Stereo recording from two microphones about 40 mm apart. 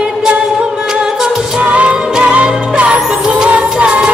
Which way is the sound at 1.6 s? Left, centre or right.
Right.